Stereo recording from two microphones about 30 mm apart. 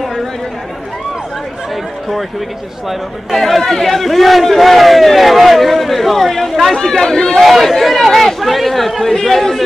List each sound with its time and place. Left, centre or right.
2.9 s a man's voice: centre
6.7 s speech: centre
7.4 s a man's voice: centre